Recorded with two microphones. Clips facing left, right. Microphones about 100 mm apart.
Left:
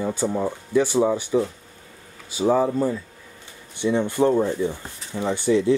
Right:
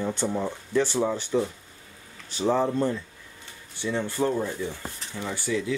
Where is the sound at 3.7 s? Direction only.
20° left (ahead or behind).